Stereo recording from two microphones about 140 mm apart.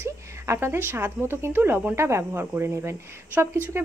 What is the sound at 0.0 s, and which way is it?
A woman's voice, 20° right (ahead or behind).